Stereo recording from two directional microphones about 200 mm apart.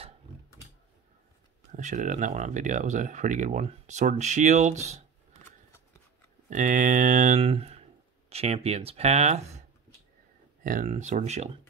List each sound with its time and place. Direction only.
1.7 s speech: 35° right (ahead or behind)
6.5 s speech: 40° right (ahead or behind)
10.6 s speech: 40° right (ahead or behind)